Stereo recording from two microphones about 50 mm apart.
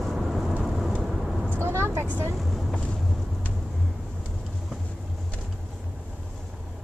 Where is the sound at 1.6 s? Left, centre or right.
Right.